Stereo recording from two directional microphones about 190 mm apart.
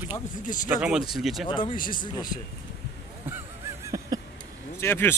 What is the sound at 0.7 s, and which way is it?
Speech, 5° right (ahead or behind).